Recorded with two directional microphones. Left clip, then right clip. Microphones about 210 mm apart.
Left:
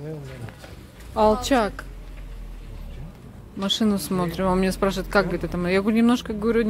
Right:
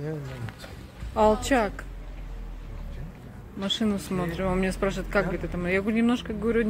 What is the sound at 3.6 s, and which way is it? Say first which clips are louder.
Speech: left 4 dB; 20° left (ahead or behind).